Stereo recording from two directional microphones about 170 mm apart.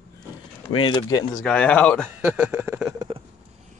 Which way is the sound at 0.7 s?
25° left (ahead or behind).